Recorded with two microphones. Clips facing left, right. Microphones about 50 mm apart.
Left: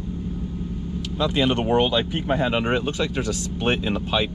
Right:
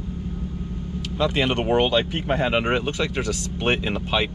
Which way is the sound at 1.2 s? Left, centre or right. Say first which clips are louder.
Even; right.